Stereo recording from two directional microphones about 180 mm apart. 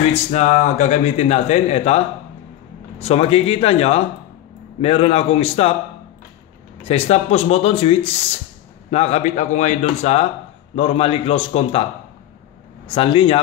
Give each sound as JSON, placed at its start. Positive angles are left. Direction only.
{"t": 0.3, "sound": "speech", "side_deg": 40}
{"t": 6.8, "sound": "speech", "side_deg": 35}
{"t": 12.8, "sound": "a man's voice", "side_deg": 30}